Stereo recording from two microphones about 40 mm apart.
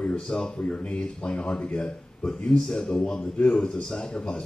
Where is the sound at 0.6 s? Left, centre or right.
Left.